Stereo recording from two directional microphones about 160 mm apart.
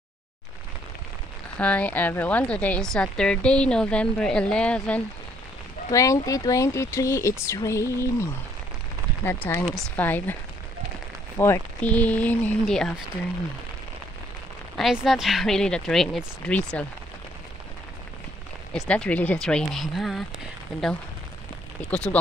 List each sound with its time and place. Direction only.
1.6 s a woman's voice: 10° left (ahead or behind)
5.9 s a woman's voice: 20° left (ahead or behind)
11.3 s a woman's voice: 15° left (ahead or behind)
14.8 s speech: centre (ahead or behind)
18.7 s speech: 5° left (ahead or behind)
21.9 s a woman's voice: 10° left (ahead or behind)